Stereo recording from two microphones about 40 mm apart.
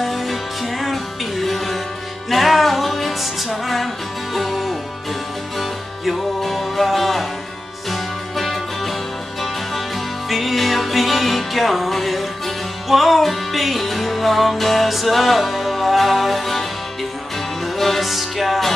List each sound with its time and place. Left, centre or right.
0.0 s music: centre
10.3 s music: centre
17.7 s music: centre